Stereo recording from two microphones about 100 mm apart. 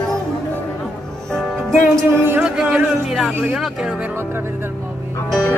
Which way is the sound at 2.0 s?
20° right (ahead or behind).